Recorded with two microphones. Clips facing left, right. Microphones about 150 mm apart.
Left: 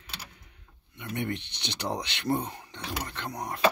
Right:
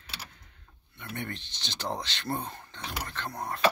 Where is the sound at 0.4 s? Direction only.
20° left (ahead or behind).